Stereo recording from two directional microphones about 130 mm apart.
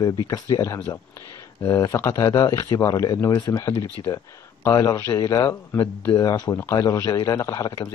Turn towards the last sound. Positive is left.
turn(degrees=30)  # may be behind; listen again after turning